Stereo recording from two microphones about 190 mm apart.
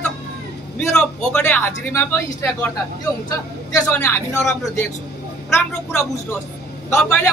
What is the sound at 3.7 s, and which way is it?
Speech, 10° left (ahead or behind).